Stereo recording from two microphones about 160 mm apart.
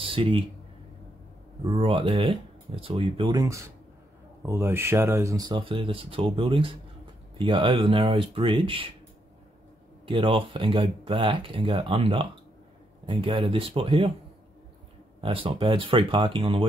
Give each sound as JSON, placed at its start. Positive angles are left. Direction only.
{"t": 0.0, "sound": "a sound", "side_deg": -35}
{"t": 1.8, "sound": "speech", "side_deg": -35}
{"t": 10.0, "sound": "speech", "side_deg": -30}
{"t": 15.2, "sound": "speech", "side_deg": -35}